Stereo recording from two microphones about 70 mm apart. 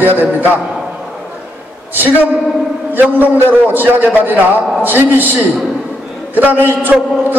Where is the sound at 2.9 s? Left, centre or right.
Right.